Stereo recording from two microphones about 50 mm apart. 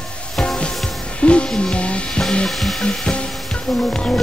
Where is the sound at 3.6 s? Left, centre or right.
Centre.